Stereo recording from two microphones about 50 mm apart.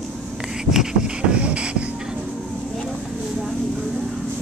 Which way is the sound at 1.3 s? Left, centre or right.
Right.